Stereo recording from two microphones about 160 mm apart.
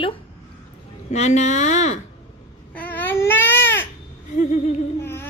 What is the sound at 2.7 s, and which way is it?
Babbling, 10° left (ahead or behind).